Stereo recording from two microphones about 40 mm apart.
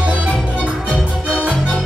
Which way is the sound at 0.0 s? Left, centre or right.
Right.